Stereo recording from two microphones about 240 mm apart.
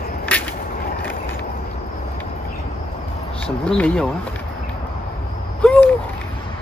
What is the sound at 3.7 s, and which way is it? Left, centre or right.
Speech, centre.